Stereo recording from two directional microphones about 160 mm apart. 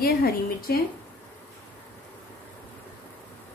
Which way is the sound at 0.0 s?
70° left (ahead or behind).